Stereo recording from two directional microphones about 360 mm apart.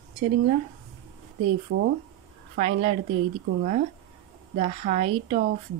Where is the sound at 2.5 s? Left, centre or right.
Centre.